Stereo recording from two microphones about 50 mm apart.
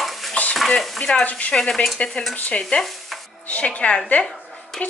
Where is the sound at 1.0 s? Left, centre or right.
Centre.